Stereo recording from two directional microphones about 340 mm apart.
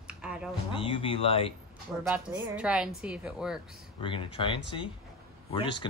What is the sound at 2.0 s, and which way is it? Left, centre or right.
A woman's voice, centre.